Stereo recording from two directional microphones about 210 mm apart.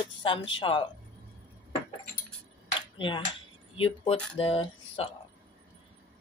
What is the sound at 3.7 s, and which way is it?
Speech, 25° left (ahead or behind).